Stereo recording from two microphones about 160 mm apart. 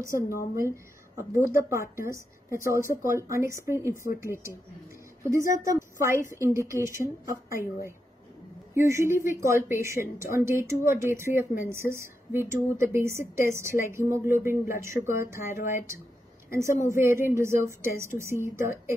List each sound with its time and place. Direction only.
1.3 s a woman's voice: 15° right (ahead or behind)
8.7 s a woman's voice: 15° right (ahead or behind)